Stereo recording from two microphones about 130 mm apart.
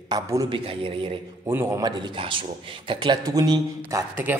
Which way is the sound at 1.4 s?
20° right (ahead or behind).